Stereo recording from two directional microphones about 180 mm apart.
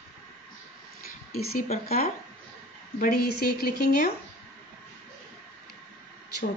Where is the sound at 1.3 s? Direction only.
55° left (ahead or behind).